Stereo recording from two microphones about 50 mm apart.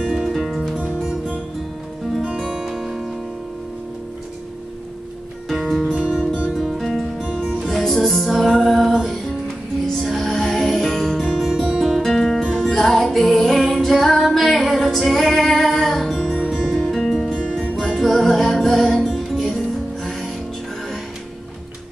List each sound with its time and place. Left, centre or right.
0.0 s music: centre
5.5 s music: centre